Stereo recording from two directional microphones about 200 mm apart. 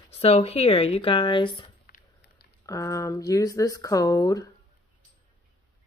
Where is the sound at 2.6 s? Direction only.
15° left (ahead or behind).